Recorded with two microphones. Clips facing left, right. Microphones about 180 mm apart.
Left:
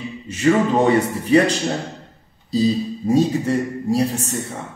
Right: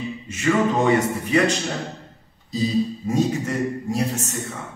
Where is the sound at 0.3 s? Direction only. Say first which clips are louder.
Left 4 dB; 30° left (ahead or behind).